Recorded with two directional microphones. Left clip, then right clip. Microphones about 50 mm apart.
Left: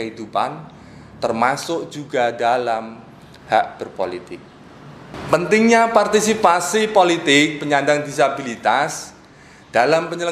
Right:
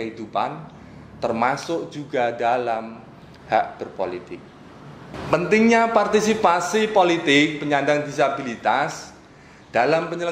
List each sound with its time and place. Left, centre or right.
0.0 s a man's voice: left